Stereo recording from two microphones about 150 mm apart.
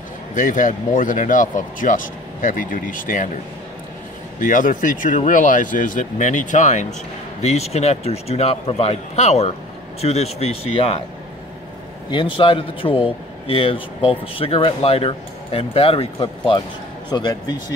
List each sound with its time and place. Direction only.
0.3 s speech: 60° left (ahead or behind)
4.4 s a man's voice: 65° left (ahead or behind); by 11.0 s 40° left (ahead or behind)
12.1 s a man's voice: 35° left (ahead or behind)